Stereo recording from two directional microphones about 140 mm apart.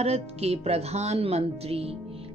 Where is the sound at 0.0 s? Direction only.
50° right (ahead or behind).